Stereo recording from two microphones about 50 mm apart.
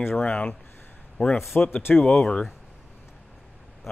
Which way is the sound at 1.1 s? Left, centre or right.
Centre.